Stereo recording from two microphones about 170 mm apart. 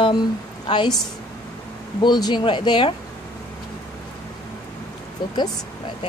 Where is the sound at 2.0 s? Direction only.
25° left (ahead or behind).